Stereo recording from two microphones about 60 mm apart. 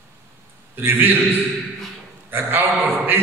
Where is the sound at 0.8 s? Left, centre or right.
Right.